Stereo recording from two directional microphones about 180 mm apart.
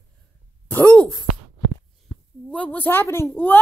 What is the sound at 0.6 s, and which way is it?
Speech, 10° left (ahead or behind).